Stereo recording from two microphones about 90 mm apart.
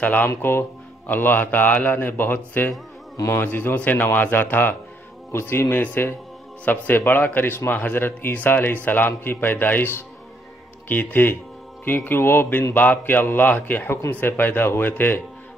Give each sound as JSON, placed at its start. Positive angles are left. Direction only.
{"t": 0.0, "sound": "speech", "side_deg": 20}
{"t": 3.2, "sound": "a man's voice", "side_deg": 30}
{"t": 3.4, "sound": "speech", "side_deg": 20}